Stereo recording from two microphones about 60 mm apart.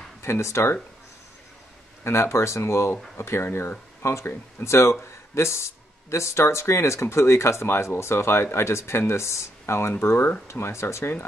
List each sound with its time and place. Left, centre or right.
0.2 s speech: left
2.0 s speech: left